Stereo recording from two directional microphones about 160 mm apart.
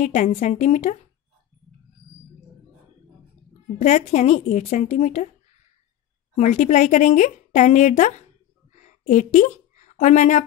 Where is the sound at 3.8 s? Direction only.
45° left (ahead or behind).